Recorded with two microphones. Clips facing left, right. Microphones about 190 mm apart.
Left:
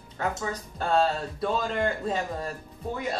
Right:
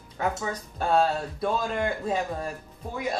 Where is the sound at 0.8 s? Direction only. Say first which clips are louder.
Right 1 dB; 10° right (ahead or behind).